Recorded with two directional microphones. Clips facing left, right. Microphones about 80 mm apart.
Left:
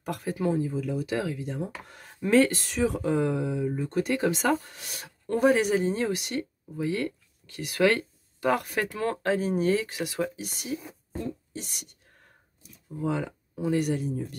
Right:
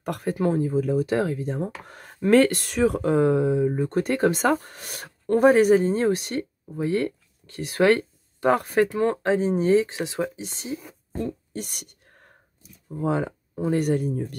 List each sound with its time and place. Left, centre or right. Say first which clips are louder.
0.0 s speech: right 4 dB; right
11.5 s whispering: right 5 dB; right
12.9 s speech: right 4 dB; right